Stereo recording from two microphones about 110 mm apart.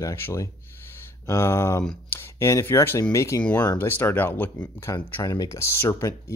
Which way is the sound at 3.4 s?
10° left (ahead or behind).